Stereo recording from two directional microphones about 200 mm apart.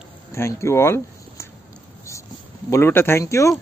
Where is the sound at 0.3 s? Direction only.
15° left (ahead or behind).